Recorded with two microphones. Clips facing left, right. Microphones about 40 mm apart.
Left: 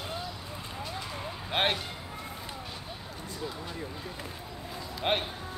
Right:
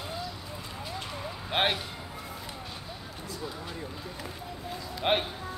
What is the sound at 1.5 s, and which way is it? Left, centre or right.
Speech, centre.